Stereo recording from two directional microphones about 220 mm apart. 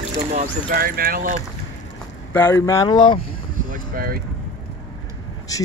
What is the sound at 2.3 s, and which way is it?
Speech, 10° left (ahead or behind).